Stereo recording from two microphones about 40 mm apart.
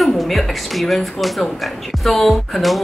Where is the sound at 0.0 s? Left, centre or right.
Centre.